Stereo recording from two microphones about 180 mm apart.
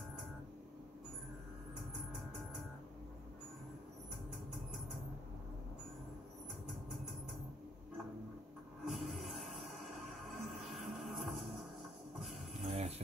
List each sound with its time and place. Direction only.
8.8 s music: centre (ahead or behind)
12.6 s jingle bell: 40° right (ahead or behind)